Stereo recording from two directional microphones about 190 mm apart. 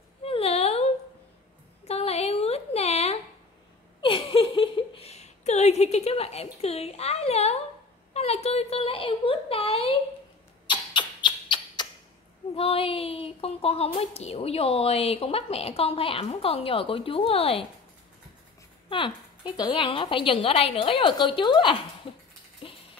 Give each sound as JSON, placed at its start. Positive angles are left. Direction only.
{"t": 0.2, "sound": "whimper", "side_deg": 30}
{"t": 1.9, "sound": "a sound", "side_deg": 35}
{"t": 10.7, "sound": "rodents", "side_deg": 25}
{"t": 12.5, "sound": "speech", "side_deg": 30}
{"t": 18.9, "sound": "a woman's voice", "side_deg": 25}
{"t": 22.6, "sound": "a sound", "side_deg": 30}